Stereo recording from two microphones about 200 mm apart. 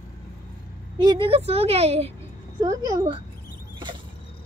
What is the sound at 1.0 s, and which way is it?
A woman's voice, 25° right (ahead or behind).